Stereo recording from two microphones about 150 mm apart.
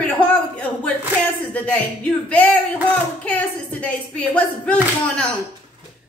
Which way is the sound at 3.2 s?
10° left (ahead or behind).